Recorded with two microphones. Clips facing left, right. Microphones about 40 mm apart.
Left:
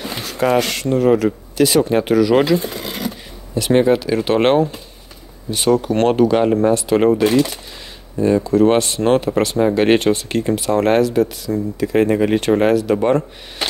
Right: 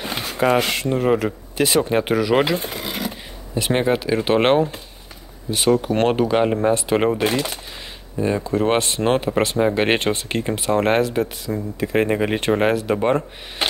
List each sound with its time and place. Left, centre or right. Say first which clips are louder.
0.0 s speech: left 1 dB; right
2.7 s vehicle: left 1 dB; centre
3.1 s speech: left 3 dB; centre